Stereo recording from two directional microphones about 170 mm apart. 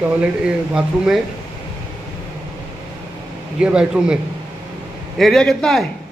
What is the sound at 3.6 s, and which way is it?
Speech, 5° right (ahead or behind).